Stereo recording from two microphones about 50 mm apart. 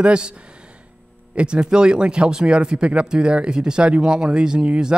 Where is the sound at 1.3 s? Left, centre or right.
Right.